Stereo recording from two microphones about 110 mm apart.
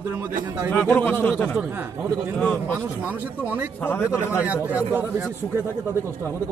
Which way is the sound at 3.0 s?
15° right (ahead or behind).